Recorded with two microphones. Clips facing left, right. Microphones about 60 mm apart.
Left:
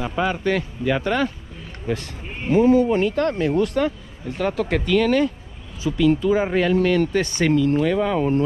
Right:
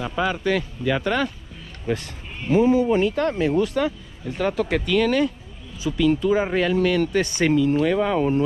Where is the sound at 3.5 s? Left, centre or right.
Left.